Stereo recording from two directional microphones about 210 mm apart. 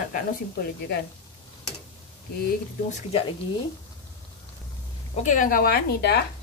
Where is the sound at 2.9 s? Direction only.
35° left (ahead or behind).